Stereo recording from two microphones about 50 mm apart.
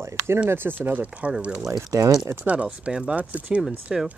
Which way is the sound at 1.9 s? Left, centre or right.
Right.